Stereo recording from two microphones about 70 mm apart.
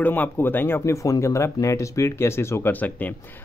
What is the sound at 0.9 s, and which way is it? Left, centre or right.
Speech, left.